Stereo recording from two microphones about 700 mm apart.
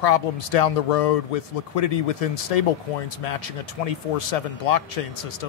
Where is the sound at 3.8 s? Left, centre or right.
Left.